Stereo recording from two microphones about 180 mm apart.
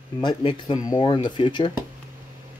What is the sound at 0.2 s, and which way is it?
Speech, 25° left (ahead or behind).